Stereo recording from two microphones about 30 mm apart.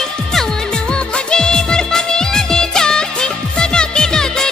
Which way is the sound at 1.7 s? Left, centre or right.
Left.